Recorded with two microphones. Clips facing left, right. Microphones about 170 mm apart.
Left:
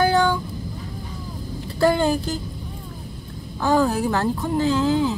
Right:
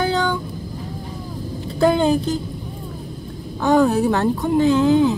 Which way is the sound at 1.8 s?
20° right (ahead or behind).